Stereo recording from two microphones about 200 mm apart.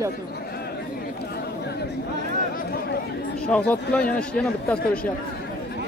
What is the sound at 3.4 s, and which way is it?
A man's voice, 5° left (ahead or behind).